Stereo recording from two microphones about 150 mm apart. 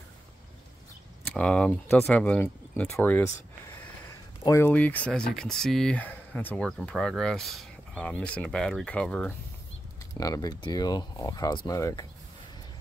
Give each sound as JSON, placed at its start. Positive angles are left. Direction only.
{"t": 1.2, "sound": "speech", "side_deg": 10}
{"t": 4.4, "sound": "speech", "side_deg": 20}
{"t": 10.1, "sound": "speech", "side_deg": 25}